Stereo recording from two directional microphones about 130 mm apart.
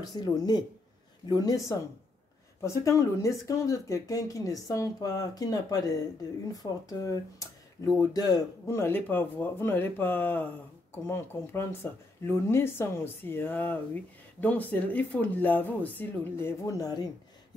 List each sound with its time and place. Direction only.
0.0 s speech: 30° left (ahead or behind)